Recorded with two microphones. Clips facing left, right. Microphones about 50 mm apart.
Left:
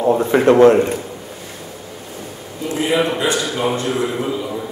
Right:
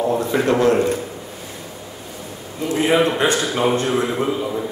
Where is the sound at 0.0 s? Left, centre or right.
Left.